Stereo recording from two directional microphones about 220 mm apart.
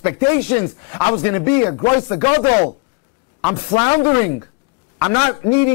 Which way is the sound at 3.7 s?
20° left (ahead or behind).